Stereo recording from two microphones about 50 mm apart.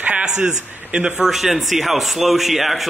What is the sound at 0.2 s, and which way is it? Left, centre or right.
A man's voice, centre.